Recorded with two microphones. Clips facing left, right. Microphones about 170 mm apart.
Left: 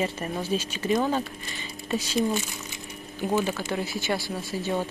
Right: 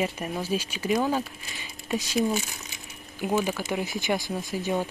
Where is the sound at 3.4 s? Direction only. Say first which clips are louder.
Even; 10° right (ahead or behind).